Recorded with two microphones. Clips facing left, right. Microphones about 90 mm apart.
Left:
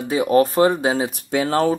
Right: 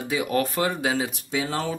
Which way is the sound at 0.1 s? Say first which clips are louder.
Left 8 dB; 35° left (ahead or behind).